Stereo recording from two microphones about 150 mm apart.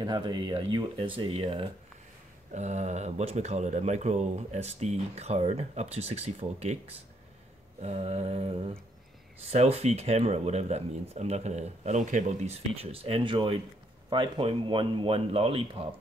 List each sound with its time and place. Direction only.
0.0 s speech: 30° right (ahead or behind)
2.5 s speech: 50° right (ahead or behind)